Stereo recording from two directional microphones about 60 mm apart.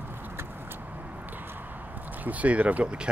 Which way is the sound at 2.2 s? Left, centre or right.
Right.